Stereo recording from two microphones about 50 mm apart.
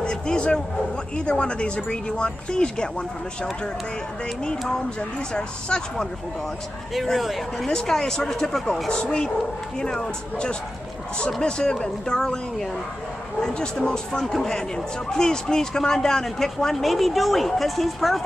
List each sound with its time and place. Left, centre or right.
0.0 s a sound: centre
1.1 s speech: centre
5.3 s speech: centre
6.9 s speech: centre
8.9 s speech: centre